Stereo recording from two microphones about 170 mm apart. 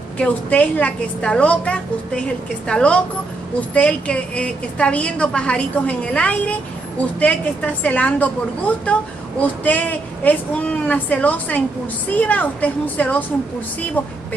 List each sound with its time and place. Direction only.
0.2 s a woman's voice: 10° left (ahead or behind)